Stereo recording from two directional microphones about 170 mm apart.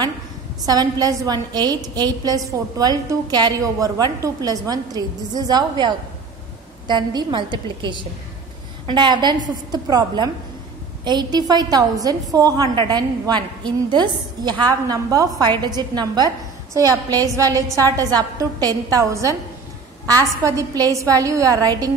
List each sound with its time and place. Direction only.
0.7 s a woman's voice: 20° right (ahead or behind)
20.4 s a woman's voice: 20° right (ahead or behind)